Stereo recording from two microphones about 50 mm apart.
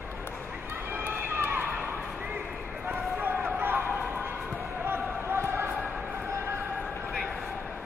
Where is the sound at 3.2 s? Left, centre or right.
Right.